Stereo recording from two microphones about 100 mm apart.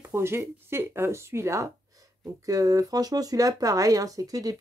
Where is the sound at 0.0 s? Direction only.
25° right (ahead or behind).